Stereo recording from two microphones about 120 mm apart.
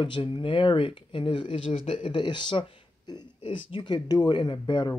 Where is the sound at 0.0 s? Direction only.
45° left (ahead or behind).